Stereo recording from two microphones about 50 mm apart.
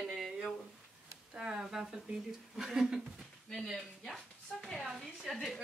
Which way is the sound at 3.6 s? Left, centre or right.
Centre.